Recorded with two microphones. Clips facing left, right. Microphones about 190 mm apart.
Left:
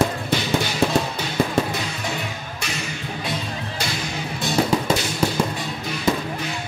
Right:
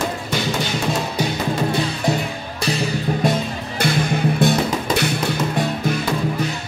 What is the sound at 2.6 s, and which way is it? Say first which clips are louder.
Music: right 11 dB; 35° right (ahead or behind).